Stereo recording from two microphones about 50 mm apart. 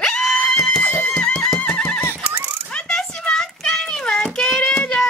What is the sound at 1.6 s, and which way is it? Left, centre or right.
Neigh, left.